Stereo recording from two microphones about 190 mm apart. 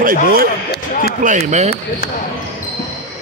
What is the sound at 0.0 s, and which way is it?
Speech, 50° right (ahead or behind).